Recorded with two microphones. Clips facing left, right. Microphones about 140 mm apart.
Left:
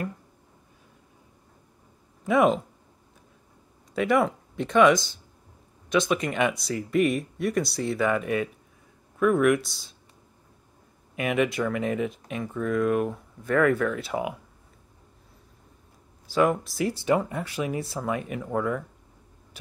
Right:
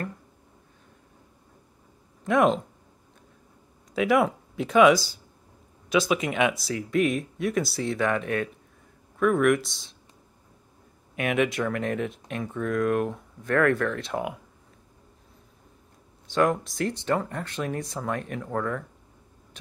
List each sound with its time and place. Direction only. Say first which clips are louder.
2.2 s speech: even; centre (ahead or behind)
3.9 s speech: right 1 dB; centre (ahead or behind)
11.1 s speech: even; centre (ahead or behind)
16.3 s speech: left 1 dB; centre (ahead or behind)
19.6 s a sound: left 2 dB; 5° left (ahead or behind)